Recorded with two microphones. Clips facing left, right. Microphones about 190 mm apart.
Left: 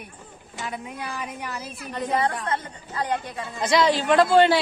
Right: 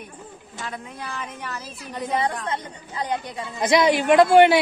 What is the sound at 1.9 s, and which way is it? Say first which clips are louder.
Speech: even; 10° right (ahead or behind).